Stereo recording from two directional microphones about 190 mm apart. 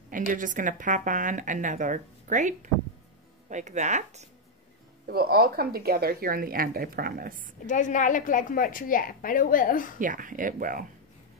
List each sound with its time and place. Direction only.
0.1 s speech: 45° right (ahead or behind)
5.0 s speech: 55° right (ahead or behind)
7.6 s a woman's voice: 40° left (ahead or behind)
9.9 s speech: 45° right (ahead or behind)